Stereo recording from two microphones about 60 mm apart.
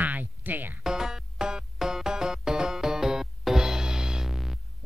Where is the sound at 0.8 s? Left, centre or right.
Centre.